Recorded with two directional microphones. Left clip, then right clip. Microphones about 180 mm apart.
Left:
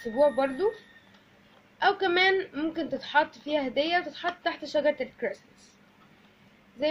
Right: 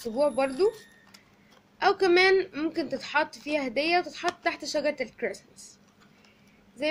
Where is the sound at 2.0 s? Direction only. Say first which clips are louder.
Right 3 dB; 90° right.